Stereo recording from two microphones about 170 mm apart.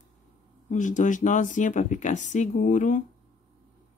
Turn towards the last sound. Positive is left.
turn(degrees=50)  # may be behind; listen again after turning